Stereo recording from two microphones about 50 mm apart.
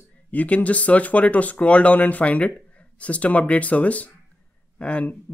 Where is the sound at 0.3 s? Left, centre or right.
Left.